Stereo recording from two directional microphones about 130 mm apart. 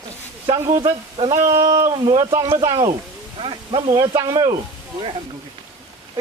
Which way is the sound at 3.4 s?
40° right (ahead or behind).